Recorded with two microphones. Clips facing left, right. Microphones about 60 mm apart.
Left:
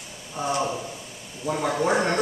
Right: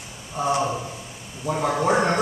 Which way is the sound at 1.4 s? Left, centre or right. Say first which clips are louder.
Right 2 dB; centre.